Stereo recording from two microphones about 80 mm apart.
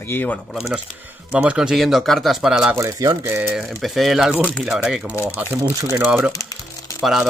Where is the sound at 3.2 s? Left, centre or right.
Right.